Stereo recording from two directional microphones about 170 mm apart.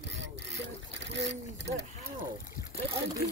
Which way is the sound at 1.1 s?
90° right.